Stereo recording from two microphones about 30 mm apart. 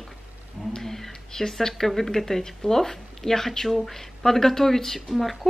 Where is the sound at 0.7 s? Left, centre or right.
Centre.